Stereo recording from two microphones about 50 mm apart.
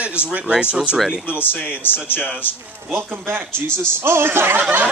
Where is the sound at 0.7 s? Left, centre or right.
Right.